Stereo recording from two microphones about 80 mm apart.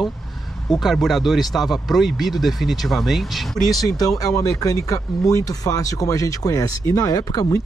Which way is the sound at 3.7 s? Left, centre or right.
Left.